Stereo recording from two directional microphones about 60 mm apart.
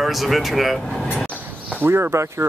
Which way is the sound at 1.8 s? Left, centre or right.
Right.